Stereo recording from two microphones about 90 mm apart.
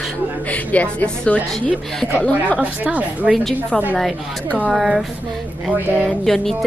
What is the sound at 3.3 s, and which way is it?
Speech, 5° left (ahead or behind).